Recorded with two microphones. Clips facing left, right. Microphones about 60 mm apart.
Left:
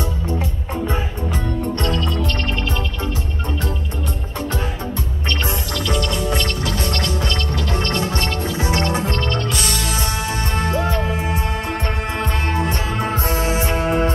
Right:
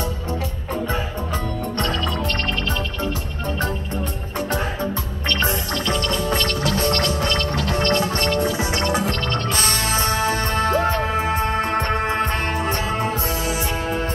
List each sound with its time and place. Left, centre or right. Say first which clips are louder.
1.3 s music: left 3 dB; right
5.3 s music: right 2 dB; right
8.6 s music: left 1 dB; left
9.3 s music: even; right
13.0 s music: left 2 dB; left